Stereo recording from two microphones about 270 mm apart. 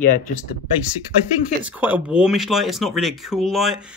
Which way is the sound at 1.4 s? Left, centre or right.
Centre.